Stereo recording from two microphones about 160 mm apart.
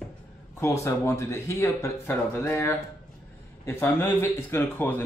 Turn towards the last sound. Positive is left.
turn(degrees=15)  # may be behind; listen again after turning